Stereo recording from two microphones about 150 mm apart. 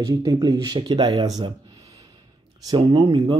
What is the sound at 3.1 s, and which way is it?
Speech, 40° right (ahead or behind).